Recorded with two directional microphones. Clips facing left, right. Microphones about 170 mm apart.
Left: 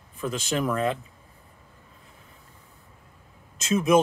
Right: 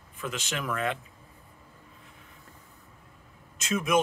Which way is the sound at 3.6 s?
30° left (ahead or behind).